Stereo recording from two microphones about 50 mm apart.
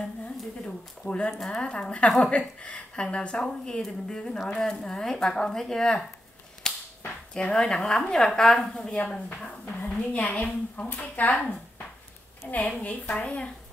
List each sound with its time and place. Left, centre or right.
0.7 s speech: left
6.6 s whip: centre
7.3 s speech: left
9.7 s a sound: left
10.1 s speech: left
12.4 s speech: left